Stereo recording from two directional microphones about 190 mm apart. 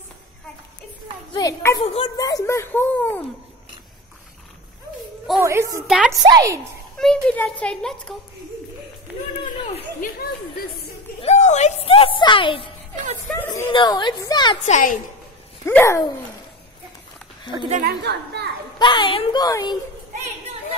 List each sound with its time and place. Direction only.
1.3 s a child's voice: 15° left (ahead or behind)
5.4 s a woman's voice: 15° right (ahead or behind)
5.9 s a child's voice: centre (ahead or behind)
6.2 s a woman's voice: 20° right (ahead or behind)
7.0 s a child's voice: 5° left (ahead or behind)
10.1 s speech: 50° left (ahead or behind)
11.1 s a sound: 35° left (ahead or behind)
13.7 s a woman's voice: 25° left (ahead or behind)
14.6 s a woman's voice: 40° left (ahead or behind)
15.6 s speech: 10° left (ahead or behind)
17.7 s a woman's voice: 55° right (ahead or behind)
18.8 s a woman's voice: 25° left (ahead or behind)